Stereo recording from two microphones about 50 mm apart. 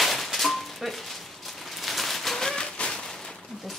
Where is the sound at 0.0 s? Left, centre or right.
Centre.